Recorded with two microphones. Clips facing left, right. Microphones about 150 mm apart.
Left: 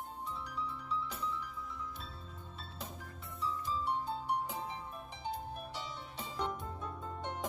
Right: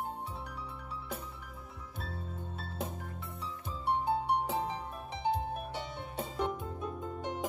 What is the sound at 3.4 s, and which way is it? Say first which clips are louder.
Music: left 8 dB; 60° right (ahead or behind).